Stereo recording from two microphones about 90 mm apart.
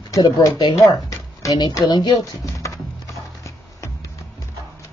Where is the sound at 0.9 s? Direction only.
40° left (ahead or behind).